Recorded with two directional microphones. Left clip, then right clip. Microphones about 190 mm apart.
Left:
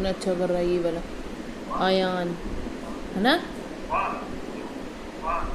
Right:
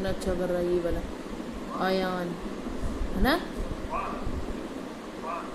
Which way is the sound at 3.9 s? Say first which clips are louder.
Left 7 dB; 15° left (ahead or behind).